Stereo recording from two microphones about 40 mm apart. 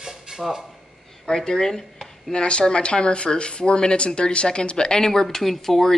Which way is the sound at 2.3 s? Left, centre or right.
Left.